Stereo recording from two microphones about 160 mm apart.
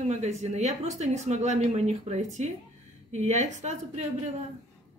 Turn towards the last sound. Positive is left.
turn(degrees=-45)  # may be behind; listen again after turning